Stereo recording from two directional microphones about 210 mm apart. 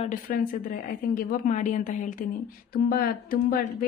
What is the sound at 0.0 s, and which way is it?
A woman's voice, 40° left (ahead or behind).